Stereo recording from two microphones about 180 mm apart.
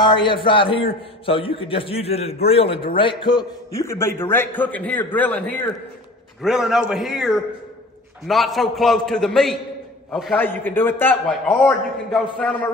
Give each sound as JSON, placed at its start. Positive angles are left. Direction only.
{"t": 0.0, "sound": "a man's voice", "side_deg": 25}
{"t": 6.4, "sound": "a man's voice", "side_deg": -5}
{"t": 10.4, "sound": "a man's voice", "side_deg": 10}